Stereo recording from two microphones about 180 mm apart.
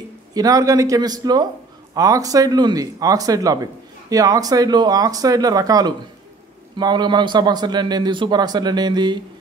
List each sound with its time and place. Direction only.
0.3 s a man's voice: 20° right (ahead or behind)